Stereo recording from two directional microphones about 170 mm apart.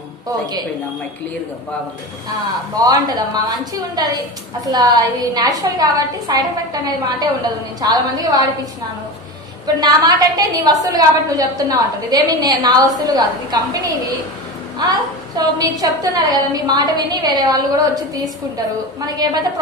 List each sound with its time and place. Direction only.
2.8 s a woman's voice: 25° right (ahead or behind)
9.8 s a woman's voice: 25° right (ahead or behind)